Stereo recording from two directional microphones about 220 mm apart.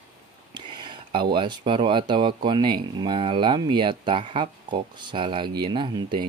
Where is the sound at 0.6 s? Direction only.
20° right (ahead or behind).